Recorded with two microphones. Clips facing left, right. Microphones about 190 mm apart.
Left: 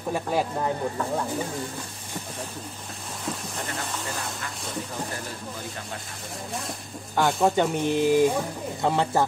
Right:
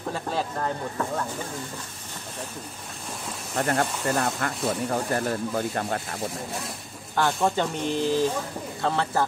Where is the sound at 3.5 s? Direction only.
60° right (ahead or behind).